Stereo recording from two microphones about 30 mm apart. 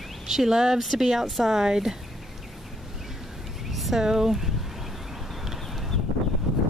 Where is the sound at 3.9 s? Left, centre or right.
Centre.